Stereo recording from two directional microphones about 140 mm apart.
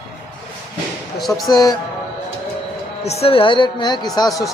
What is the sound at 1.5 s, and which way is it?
Speech, 25° left (ahead or behind).